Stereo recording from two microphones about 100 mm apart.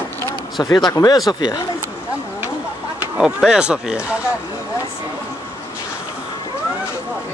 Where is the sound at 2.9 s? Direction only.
10° right (ahead or behind).